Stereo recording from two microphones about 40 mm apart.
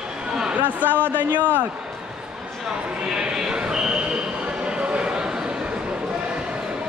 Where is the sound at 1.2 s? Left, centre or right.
Right.